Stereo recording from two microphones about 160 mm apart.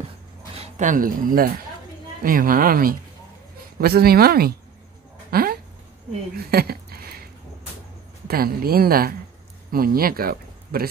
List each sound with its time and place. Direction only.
0.6 s a woman's voice: 50° right (ahead or behind); by 4.6 s 70° right (ahead or behind)
5.3 s a sound: 70° right (ahead or behind)
8.3 s a woman's voice: 70° right (ahead or behind)